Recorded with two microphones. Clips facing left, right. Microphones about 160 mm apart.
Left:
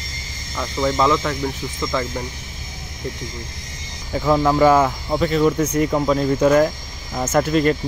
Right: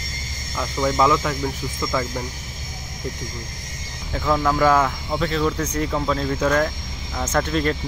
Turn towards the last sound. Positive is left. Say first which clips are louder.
# left 5 dB
turn(degrees=5)  # may be behind; listen again after turning